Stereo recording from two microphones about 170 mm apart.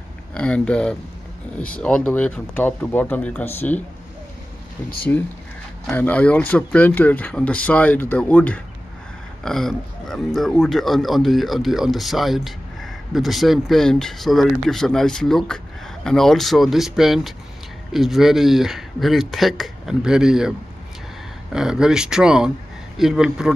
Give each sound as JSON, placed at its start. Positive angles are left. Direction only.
{"t": 0.3, "sound": "speech", "side_deg": 5}
{"t": 5.1, "sound": "speech", "side_deg": 15}